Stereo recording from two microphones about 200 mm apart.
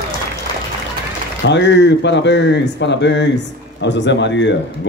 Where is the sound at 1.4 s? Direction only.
60° left (ahead or behind).